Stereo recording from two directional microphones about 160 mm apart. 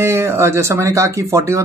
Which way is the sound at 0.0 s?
15° right (ahead or behind).